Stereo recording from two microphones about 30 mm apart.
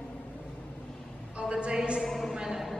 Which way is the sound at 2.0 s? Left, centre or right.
Centre.